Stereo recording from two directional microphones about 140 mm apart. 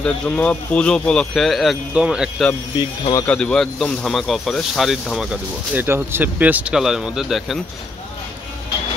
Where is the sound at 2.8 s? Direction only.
30° left (ahead or behind).